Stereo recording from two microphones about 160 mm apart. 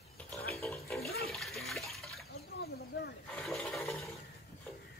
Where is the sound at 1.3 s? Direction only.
Centre (ahead or behind).